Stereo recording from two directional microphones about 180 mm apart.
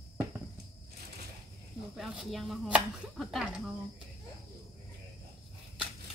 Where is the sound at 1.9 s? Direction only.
5° right (ahead or behind).